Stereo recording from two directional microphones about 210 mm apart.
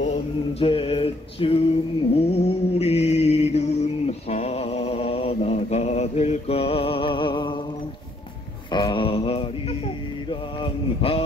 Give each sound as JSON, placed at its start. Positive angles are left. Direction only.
{"t": 0.0, "sound": "male singing", "side_deg": 30}
{"t": 2.1, "sound": "mantra", "side_deg": 30}
{"t": 8.7, "sound": "mantra", "side_deg": 20}